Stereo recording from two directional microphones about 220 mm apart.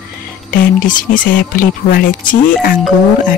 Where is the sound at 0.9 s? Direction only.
35° left (ahead or behind).